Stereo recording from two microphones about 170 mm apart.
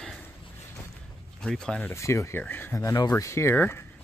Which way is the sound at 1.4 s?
5° left (ahead or behind).